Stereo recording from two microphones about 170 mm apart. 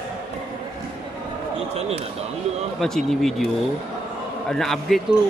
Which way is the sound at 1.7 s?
35° right (ahead or behind).